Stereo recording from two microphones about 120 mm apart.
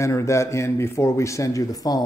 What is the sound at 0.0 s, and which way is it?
Speech, 25° left (ahead or behind).